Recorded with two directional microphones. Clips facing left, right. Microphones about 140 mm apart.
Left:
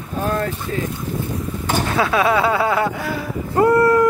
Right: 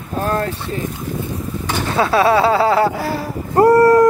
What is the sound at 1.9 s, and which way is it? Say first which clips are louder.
Speech: right 4 dB; 30° right (ahead or behind).